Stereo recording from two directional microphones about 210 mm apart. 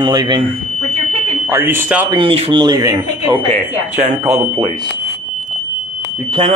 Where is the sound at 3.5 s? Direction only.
30° right (ahead or behind).